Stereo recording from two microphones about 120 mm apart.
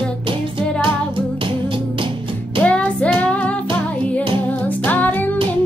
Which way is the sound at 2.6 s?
10° left (ahead or behind).